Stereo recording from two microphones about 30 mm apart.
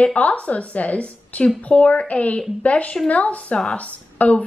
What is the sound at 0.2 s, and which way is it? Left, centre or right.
A woman's voice, left.